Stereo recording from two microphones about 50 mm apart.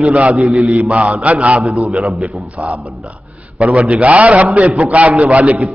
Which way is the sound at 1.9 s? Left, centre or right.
Centre.